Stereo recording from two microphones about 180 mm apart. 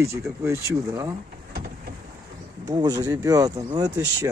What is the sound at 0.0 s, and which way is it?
Speech, 15° right (ahead or behind).